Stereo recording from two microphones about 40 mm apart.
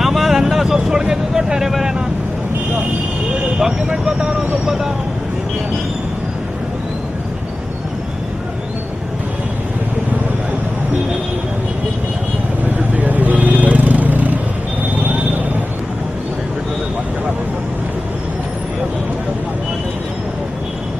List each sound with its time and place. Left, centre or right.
0.0 s vehicle: centre
3.5 s vehicle: centre
12.9 s vehicle: right